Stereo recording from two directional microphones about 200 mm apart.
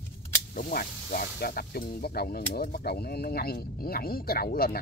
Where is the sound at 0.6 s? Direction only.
45° left (ahead or behind).